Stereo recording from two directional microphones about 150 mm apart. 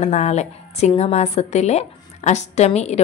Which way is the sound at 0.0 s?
50° left (ahead or behind).